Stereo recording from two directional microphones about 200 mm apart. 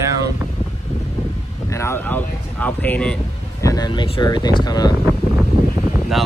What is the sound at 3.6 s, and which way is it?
Speech, 20° left (ahead or behind).